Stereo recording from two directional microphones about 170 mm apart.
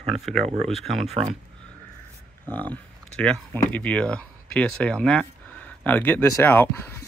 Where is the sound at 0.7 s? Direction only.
Centre (ahead or behind).